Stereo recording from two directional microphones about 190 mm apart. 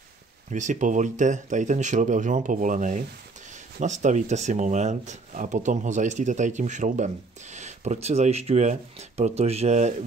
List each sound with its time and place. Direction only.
0.5 s speech: 40° right (ahead or behind)